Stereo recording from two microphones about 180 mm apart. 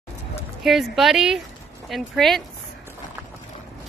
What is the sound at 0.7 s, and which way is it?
Speech, centre (ahead or behind).